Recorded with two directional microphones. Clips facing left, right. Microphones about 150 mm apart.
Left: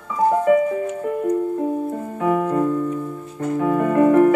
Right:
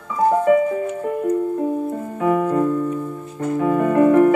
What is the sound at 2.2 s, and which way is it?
Keyboard, 40° right (ahead or behind).